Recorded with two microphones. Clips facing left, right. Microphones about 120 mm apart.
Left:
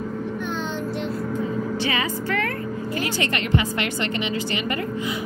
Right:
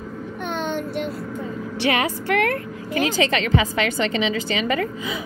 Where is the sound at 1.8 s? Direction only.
70° right (ahead or behind).